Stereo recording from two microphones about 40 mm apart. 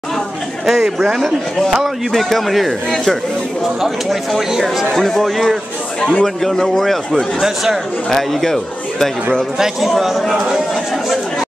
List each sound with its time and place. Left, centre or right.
0.7 s speech: centre
1.7 s a man's voice: centre
4.4 s speech: centre
4.9 s a man's voice: centre
5.9 s a man's voice: left
6.2 s speech: centre
7.3 s speech: centre
8.1 s speech: centre
9.6 s a man's voice: centre